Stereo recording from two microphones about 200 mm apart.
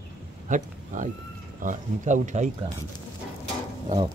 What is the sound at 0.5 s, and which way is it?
Speech, 40° right (ahead or behind).